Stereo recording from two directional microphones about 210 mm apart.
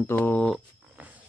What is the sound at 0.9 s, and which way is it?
Wild animals, 5° right (ahead or behind).